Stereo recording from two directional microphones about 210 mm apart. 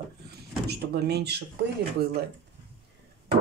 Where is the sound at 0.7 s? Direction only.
50° right (ahead or behind).